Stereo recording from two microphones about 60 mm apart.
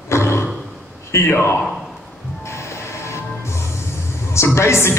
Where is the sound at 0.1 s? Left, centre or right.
Left.